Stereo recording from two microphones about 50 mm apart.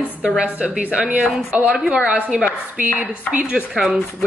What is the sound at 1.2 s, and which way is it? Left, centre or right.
Speech, centre.